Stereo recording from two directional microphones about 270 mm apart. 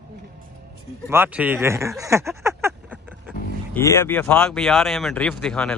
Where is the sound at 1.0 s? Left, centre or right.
Centre.